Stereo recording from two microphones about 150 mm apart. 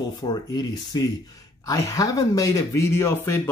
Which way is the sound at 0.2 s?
25° left (ahead or behind).